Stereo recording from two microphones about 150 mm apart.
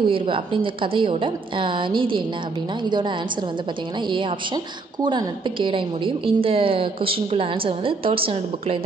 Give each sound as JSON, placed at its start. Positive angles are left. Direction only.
{"t": 0.0, "sound": "a woman's voice", "side_deg": -35}
{"t": 5.0, "sound": "a woman's voice", "side_deg": -30}